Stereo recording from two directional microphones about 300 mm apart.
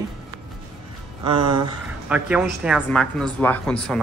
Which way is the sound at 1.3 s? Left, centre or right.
Right.